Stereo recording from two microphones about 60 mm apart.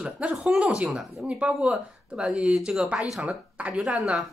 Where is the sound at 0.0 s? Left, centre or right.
Centre.